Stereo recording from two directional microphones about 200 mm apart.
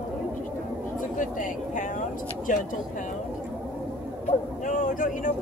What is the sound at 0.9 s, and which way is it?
Speech, 40° left (ahead or behind).